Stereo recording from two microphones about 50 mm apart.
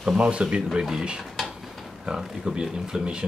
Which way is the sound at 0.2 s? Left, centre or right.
Right.